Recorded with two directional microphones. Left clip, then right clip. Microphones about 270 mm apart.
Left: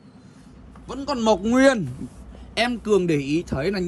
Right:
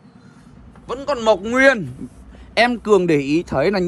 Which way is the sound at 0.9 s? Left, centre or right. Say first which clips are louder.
Right 4 dB; left.